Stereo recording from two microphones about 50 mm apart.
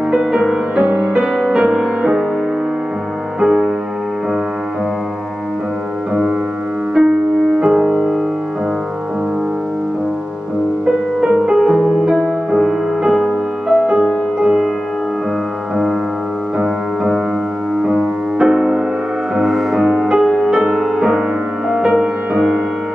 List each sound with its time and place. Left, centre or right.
0.1 s music: centre
3.3 s music: centre
7.0 s music: centre
11.1 s music: centre
14.4 s music: centre
16.5 s piano: centre
17.8 s music: centre
20.7 s music: centre
21.0 s music: centre